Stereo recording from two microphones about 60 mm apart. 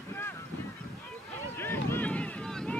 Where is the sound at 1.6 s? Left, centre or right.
Left.